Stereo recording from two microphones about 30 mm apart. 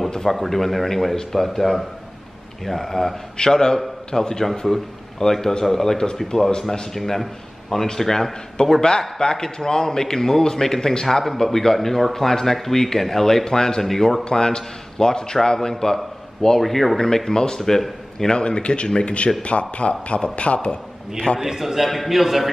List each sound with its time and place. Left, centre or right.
0.2 s speech: centre
3.3 s a man's voice: left
6.2 s a man's voice: left
6.9 s a man's voice: centre
17.0 s a man's voice: centre
17.6 s speech: centre
18.3 s speech: left
21.4 s a man's voice: centre